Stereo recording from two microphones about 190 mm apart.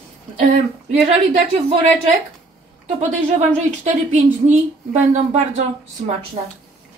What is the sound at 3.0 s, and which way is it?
Speech, 35° right (ahead or behind).